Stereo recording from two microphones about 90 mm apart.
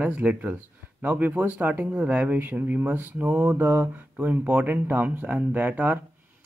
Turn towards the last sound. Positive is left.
turn(degrees=-15)  # may be behind; listen again after turning